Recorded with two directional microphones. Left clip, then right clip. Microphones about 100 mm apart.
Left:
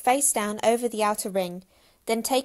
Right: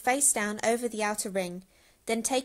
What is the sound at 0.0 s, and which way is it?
A woman's voice, 30° left (ahead or behind).